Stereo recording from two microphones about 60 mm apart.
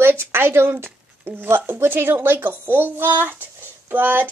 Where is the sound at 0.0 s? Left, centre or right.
Right.